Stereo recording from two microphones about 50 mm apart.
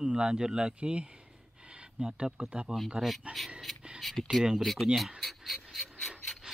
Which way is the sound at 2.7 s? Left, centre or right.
Centre.